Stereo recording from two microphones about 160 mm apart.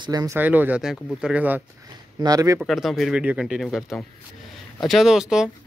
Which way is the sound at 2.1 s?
25° right (ahead or behind).